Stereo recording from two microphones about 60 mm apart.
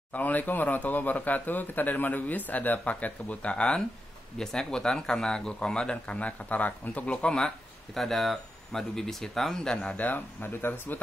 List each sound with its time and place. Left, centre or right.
0.1 s a man's voice: left; by 9.8 s centre
9.9 s speech: left